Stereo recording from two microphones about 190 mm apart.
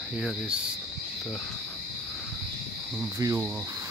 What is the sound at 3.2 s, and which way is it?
Speech, 15° right (ahead or behind).